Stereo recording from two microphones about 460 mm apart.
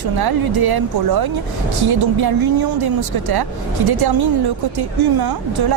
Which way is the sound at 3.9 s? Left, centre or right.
Right.